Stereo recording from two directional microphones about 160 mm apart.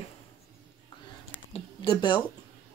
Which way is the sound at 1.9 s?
30° left (ahead or behind).